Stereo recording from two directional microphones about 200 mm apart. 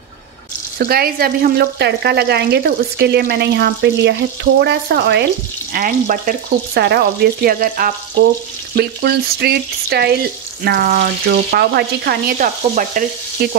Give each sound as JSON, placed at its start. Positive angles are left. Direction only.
{"t": 0.7, "sound": "speech", "side_deg": -50}